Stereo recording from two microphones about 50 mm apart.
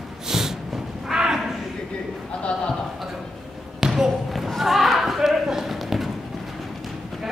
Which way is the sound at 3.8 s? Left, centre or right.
Centre.